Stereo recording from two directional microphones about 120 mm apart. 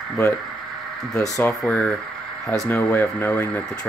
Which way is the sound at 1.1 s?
30° left (ahead or behind).